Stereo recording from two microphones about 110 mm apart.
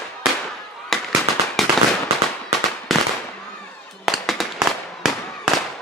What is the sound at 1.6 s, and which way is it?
Firecracker, centre (ahead or behind).